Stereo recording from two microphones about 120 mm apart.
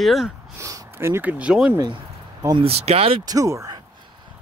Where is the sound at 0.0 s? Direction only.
Centre (ahead or behind).